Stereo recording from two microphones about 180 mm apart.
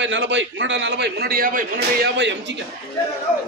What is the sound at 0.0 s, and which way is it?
A man's voice, 90° right.